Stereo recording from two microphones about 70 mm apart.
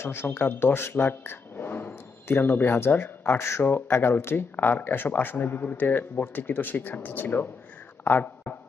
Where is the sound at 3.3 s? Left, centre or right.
Left.